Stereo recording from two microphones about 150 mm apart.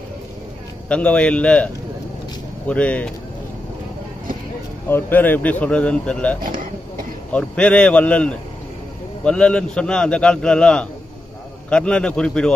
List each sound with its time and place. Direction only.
0.8 s a man's voice: 10° left (ahead or behind)
2.7 s a man's voice: 10° left (ahead or behind)
4.8 s a man's voice: 15° left (ahead or behind)
6.4 s a sound: 70° right (ahead or behind)
7.3 s a man's voice: 10° left (ahead or behind)